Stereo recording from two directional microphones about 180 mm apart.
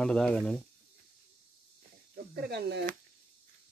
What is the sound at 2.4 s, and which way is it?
Speech, 65° right (ahead or behind).